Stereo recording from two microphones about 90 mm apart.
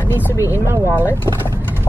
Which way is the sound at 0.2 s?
30° left (ahead or behind).